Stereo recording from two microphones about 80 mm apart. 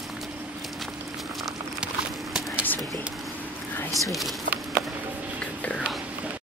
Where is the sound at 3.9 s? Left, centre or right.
Centre.